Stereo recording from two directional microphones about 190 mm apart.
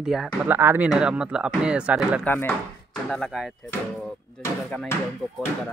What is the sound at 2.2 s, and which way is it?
Speech, 10° left (ahead or behind).